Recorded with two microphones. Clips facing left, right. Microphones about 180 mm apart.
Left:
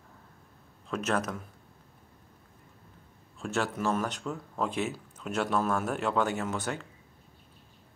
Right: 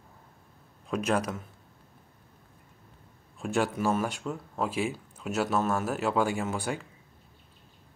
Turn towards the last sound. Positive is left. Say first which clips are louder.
# right 1 dB
turn(degrees=-10)  # may be behind; listen again after turning